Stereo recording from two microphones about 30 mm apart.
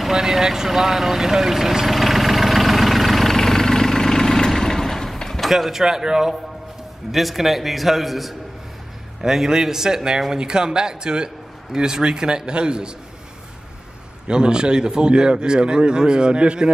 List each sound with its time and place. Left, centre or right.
0.0 s speech: centre
1.9 s vehicle: centre
3.3 s vehicle: centre
5.4 s speech: centre
5.9 s a man's voice: centre
7.1 s a man's voice: centre
9.2 s a man's voice: centre
14.2 s a man's voice: right